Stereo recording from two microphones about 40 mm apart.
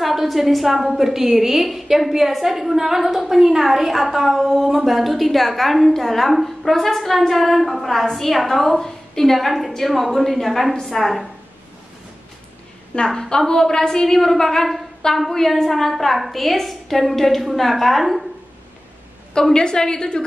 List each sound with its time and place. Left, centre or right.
0.0 s a woman's voice: centre
12.9 s a woman's voice: centre
19.5 s a woman's voice: centre